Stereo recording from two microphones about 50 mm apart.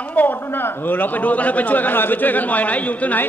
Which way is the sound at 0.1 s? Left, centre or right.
Left.